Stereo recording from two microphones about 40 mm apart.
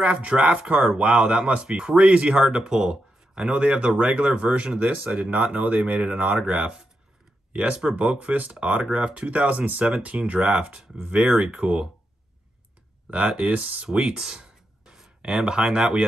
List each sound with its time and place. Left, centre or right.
0.0 s speech: right
4.7 s speech: right
5.6 s speech: right
7.9 s speech: right
13.2 s speech: right
13.8 s a sound: right